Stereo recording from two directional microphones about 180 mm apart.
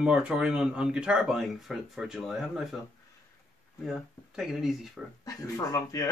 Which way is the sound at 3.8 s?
5° right (ahead or behind).